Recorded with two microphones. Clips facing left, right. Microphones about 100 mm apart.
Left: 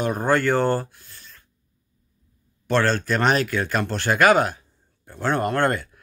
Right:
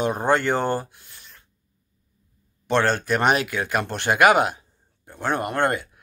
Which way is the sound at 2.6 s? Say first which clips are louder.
Even; 20° right (ahead or behind).